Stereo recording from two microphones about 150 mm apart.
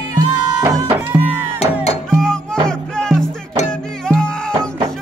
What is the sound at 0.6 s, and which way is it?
Music, 15° right (ahead or behind).